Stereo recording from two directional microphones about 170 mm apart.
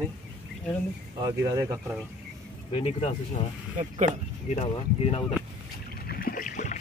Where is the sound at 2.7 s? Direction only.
35° left (ahead or behind).